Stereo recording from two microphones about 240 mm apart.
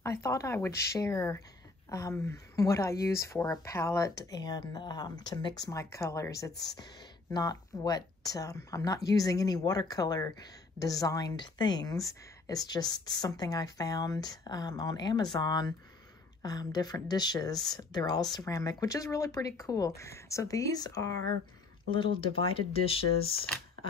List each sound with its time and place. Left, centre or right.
0.0 s speech: centre
6.5 s speech: left
7.3 s speech: centre